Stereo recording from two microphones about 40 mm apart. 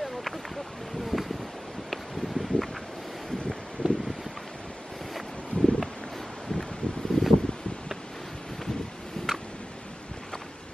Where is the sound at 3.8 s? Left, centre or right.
Left.